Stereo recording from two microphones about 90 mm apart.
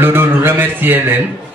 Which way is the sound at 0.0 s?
25° right (ahead or behind).